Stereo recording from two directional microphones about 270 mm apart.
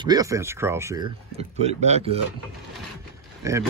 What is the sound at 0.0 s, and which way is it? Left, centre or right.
Speech, centre.